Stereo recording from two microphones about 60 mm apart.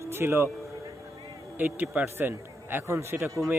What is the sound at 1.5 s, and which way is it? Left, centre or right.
Speech, right.